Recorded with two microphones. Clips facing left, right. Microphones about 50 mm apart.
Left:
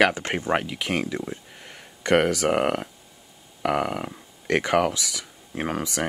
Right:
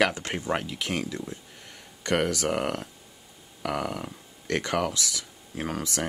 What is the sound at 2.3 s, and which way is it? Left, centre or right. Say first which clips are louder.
Speech: left 5 dB; left.